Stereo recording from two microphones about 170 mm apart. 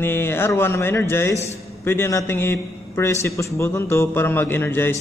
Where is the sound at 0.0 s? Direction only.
15° left (ahead or behind).